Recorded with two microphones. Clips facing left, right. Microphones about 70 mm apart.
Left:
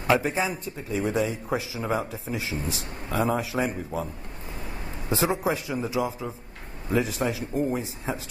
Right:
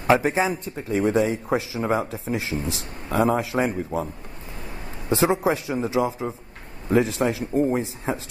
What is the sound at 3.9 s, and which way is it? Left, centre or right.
Speech, right.